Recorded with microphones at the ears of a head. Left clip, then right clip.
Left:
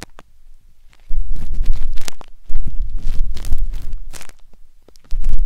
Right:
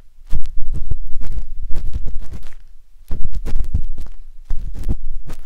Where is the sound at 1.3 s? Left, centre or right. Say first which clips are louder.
Left 3 dB; left.